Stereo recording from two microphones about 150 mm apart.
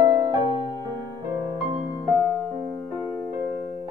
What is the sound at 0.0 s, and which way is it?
Music, 30° right (ahead or behind).